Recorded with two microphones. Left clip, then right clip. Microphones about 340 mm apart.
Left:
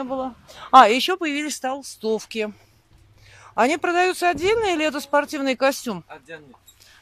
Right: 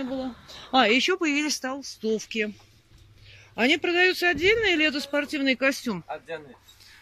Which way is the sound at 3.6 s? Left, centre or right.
Centre.